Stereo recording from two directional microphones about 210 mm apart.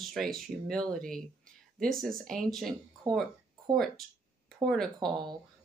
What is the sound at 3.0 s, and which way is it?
Speech, 20° right (ahead or behind).